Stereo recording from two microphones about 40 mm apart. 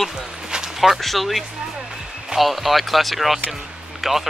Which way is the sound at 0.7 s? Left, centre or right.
Centre.